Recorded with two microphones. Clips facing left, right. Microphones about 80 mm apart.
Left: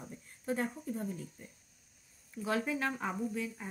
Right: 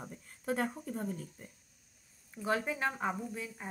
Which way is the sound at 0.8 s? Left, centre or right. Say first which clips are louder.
Even; right.